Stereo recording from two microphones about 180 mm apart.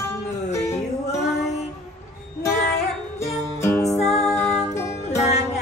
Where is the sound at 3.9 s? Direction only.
40° left (ahead or behind).